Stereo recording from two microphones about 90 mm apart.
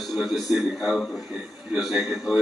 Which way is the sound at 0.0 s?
Centre (ahead or behind).